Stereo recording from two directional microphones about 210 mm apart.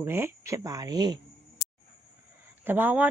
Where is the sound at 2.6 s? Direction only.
10° right (ahead or behind).